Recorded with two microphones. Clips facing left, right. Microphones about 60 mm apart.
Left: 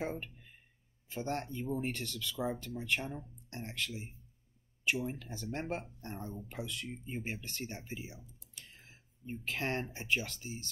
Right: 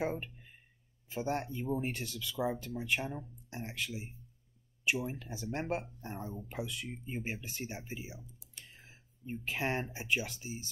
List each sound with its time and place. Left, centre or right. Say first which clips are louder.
0.0 s speech: right 3 dB; centre
8.6 s speech: right 1 dB; centre